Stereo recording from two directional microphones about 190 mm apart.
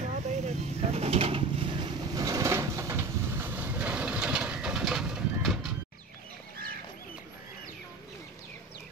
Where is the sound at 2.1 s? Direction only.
20° right (ahead or behind); by 5.7 s centre (ahead or behind).